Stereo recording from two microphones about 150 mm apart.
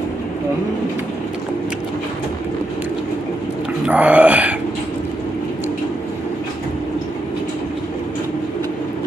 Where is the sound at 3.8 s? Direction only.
10° right (ahead or behind).